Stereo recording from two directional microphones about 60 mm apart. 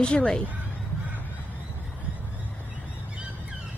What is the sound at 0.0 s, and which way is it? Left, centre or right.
Speech, centre.